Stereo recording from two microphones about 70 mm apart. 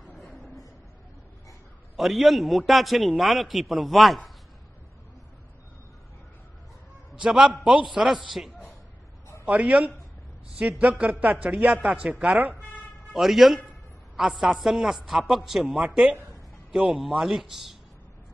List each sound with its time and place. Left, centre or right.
0.2 s a sound: centre
2.0 s a man's voice: centre
7.1 s a man's voice: centre
9.4 s speech: right
13.1 s a man's voice: centre